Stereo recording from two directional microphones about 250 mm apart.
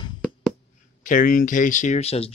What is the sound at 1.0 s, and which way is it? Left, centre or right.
Speech, left.